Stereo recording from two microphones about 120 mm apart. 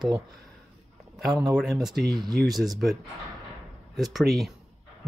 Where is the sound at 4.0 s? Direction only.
Centre (ahead or behind).